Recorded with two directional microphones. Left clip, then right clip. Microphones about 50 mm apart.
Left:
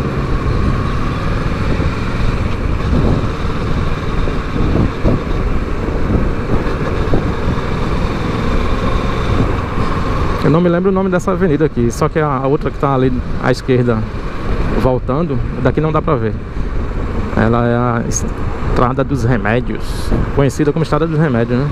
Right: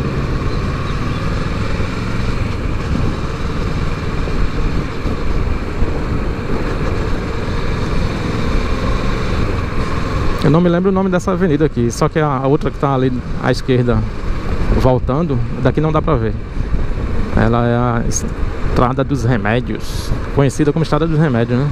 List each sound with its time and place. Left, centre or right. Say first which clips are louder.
8.3 s vehicle: left 2 dB; centre
10.4 s speech: left 1 dB; centre
12.8 s speech: left 2 dB; centre
15.0 s speech: left 1 dB; centre
17.4 s speech: left 1 dB; centre